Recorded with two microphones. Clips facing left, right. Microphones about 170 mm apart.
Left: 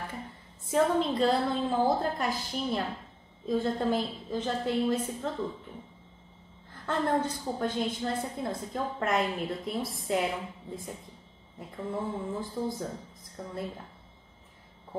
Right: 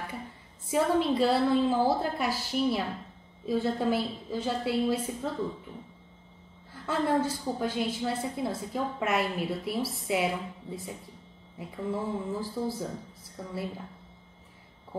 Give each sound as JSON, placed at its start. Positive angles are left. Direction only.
{"t": 0.7, "sound": "a woman's voice", "side_deg": -10}
{"t": 6.9, "sound": "a woman's voice", "side_deg": -5}
{"t": 11.5, "sound": "a woman's voice", "side_deg": -10}